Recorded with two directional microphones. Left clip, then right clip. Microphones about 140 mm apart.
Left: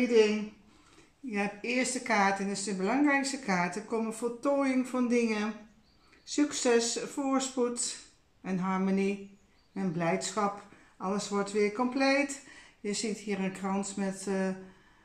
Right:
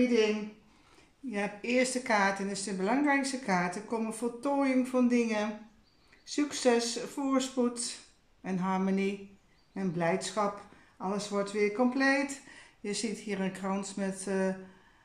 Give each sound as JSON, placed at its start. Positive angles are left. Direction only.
{"t": 1.3, "sound": "a woman's voice", "side_deg": -25}